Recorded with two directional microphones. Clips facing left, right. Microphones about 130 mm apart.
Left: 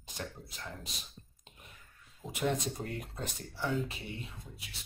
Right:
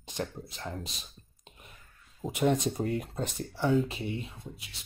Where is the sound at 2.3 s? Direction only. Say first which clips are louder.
Right 6 dB; 20° right (ahead or behind).